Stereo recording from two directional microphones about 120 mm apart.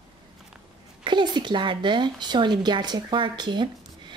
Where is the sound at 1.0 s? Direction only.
40° right (ahead or behind).